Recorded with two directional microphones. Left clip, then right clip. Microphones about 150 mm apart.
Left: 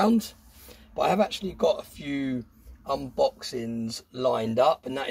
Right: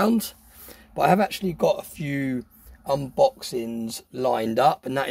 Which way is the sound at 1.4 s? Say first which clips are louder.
Right 2 dB; 90° right.